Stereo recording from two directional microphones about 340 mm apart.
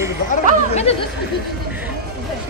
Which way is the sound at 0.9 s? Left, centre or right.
Centre.